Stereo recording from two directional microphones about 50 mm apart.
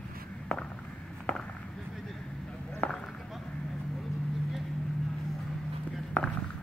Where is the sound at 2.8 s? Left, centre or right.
Left.